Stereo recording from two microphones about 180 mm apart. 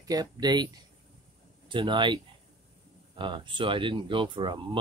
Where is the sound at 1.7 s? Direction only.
25° right (ahead or behind).